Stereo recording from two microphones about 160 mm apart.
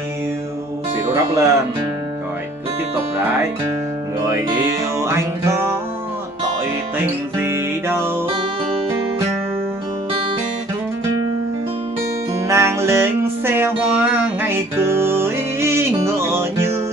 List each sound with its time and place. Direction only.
1.1 s speech: 20° right (ahead or behind)
4.9 s music: 15° right (ahead or behind)
7.3 s music: 15° right (ahead or behind)
12.4 s music: 15° right (ahead or behind)